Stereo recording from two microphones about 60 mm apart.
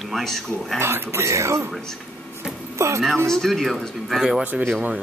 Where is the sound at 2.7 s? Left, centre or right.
Right.